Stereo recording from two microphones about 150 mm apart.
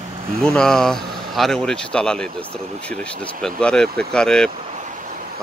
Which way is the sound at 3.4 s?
5° left (ahead or behind).